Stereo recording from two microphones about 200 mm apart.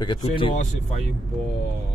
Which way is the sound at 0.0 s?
25° left (ahead or behind).